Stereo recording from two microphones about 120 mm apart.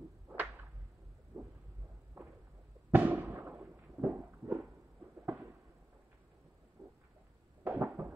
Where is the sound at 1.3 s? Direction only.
30° right (ahead or behind).